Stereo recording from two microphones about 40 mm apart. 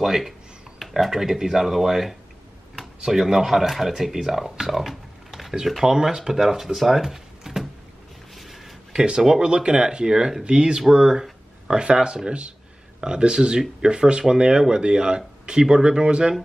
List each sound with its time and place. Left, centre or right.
0.0 s speech: centre
8.4 s a sound: centre
8.9 s speech: right